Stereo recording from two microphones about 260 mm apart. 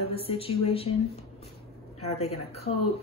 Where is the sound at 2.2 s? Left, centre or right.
Left.